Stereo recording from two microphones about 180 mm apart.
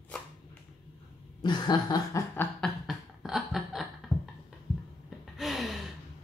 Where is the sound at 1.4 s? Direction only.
25° left (ahead or behind).